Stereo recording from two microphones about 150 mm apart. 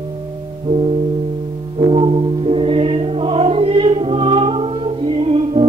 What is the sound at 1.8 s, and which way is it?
Music, 40° right (ahead or behind).